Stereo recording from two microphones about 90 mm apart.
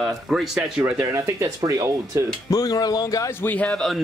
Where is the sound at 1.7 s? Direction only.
40° right (ahead or behind).